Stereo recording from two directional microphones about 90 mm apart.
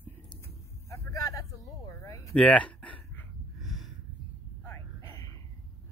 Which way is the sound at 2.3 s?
10° left (ahead or behind).